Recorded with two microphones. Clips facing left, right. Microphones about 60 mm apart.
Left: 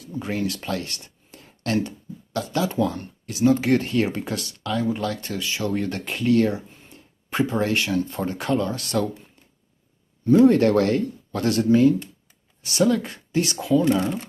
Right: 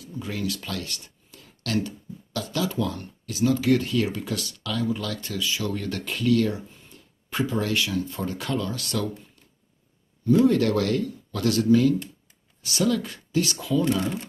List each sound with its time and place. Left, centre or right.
0.0 s speech: left
10.2 s speech: left